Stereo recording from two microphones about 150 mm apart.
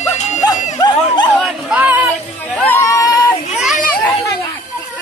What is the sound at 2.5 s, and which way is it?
Chatter, 15° left (ahead or behind).